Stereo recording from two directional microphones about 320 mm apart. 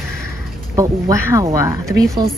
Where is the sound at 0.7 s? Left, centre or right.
Centre.